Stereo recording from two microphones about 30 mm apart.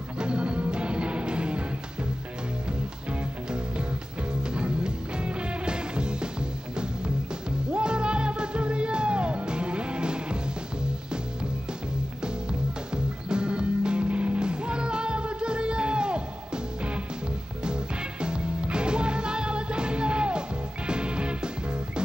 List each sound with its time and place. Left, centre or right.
0.2 s music: right
3.1 s music: right
7.7 s music: right
12.9 s music: right
14.4 s music: right
18.2 s music: right